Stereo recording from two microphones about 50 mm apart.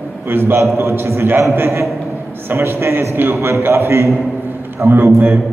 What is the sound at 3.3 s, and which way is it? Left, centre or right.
A man's voice, right.